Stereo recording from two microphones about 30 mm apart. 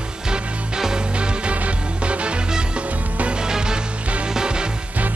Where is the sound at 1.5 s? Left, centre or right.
Right.